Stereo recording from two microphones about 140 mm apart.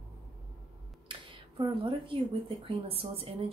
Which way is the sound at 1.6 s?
40° right (ahead or behind).